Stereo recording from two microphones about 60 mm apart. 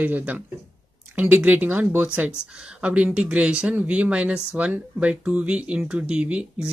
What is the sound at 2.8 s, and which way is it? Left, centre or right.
Speech, right.